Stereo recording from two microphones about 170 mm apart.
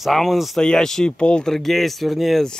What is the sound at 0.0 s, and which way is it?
Speech, centre (ahead or behind).